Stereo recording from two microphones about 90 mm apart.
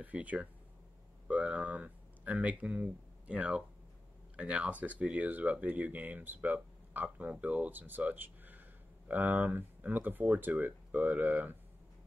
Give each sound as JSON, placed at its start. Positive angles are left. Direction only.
{"t": 0.0, "sound": "speech", "side_deg": -15}